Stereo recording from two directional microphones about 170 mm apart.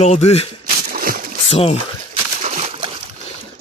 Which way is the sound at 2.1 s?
40° right (ahead or behind).